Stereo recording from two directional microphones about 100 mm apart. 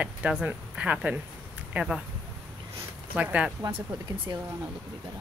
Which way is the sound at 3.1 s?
15° right (ahead or behind).